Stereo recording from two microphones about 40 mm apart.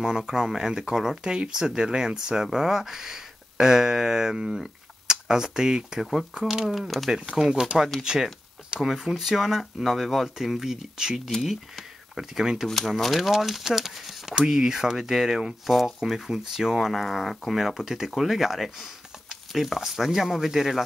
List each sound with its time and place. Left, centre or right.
0.0 s speech: centre
7.1 s speech: right
7.3 s speech: centre
12.2 s speech: centre
12.6 s speech: centre
16.7 s speech: centre